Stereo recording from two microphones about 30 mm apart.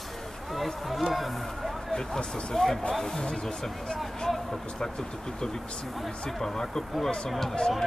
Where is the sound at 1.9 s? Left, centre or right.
Left.